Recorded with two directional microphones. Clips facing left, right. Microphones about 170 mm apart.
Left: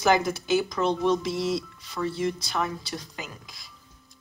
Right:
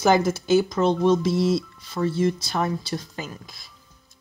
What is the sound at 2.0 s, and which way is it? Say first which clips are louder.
Speech: right 5 dB; 25° right (ahead or behind).